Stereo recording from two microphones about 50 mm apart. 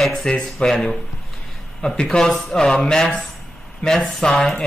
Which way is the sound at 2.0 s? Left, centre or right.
Centre.